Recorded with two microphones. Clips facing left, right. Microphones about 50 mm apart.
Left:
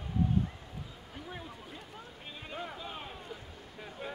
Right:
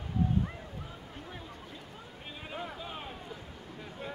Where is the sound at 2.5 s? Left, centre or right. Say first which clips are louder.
Right 1 dB; centre.